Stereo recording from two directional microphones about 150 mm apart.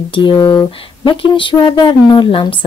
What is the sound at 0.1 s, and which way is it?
Speech, 30° left (ahead or behind).